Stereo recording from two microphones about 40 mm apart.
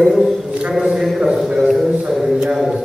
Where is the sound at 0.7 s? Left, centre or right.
Centre.